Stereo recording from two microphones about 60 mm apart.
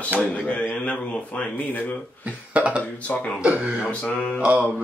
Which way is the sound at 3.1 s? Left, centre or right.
Left.